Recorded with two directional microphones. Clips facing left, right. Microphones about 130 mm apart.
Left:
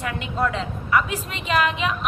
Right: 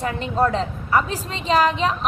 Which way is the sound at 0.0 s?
35° right (ahead or behind).